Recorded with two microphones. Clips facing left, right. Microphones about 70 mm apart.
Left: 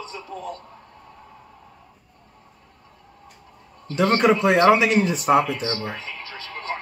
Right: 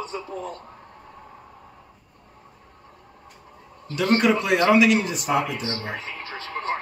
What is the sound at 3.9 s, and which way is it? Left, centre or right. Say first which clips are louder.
A man's voice: left 2 dB; left.